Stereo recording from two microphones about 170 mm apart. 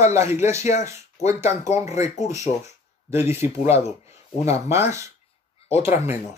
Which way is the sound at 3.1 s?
15° right (ahead or behind).